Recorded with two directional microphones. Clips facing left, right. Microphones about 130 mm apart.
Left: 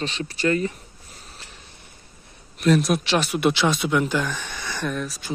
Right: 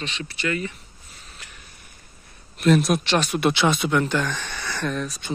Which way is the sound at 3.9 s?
10° left (ahead or behind).